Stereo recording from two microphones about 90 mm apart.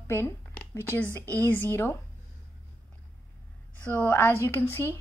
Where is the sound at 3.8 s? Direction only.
20° left (ahead or behind).